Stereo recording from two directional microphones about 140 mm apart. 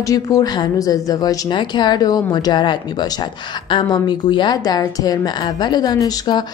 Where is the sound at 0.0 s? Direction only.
25° left (ahead or behind).